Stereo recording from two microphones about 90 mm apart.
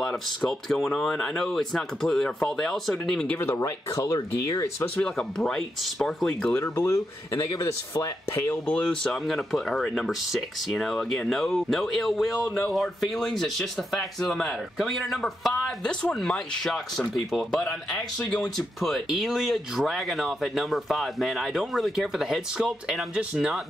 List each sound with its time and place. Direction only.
0.0 s speech: 5° left (ahead or behind)
3.3 s speech: 25° left (ahead or behind)
4.8 s speech: 20° left (ahead or behind)
5.1 s speech: 5° left (ahead or behind)
6.5 s speech: 30° left (ahead or behind)
8.7 s speech: 5° left (ahead or behind)
18.8 s speech: centre (ahead or behind)